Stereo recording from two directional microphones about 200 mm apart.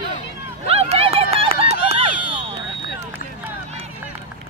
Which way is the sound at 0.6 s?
30° right (ahead or behind).